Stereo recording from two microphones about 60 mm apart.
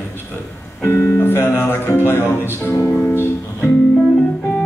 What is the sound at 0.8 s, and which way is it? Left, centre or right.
Speech, left.